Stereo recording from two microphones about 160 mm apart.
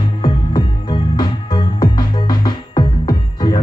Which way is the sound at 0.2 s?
25° left (ahead or behind).